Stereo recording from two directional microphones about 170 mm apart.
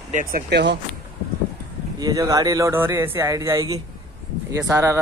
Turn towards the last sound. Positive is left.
turn(degrees=-15)  # may be behind; listen again after turning